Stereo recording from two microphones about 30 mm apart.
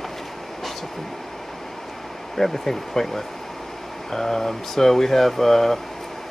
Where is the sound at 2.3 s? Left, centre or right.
Centre.